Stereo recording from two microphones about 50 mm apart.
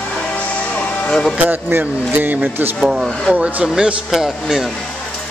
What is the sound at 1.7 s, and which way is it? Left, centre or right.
Speech, right.